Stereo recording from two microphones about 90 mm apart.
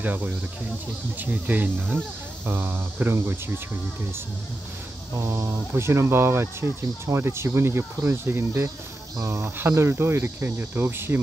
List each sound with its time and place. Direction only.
0.0 s speech: 20° right (ahead or behind)
5.1 s speech: 35° right (ahead or behind)